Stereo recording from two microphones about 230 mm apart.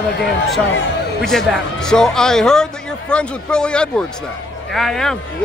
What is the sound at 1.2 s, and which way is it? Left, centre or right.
Speech, centre.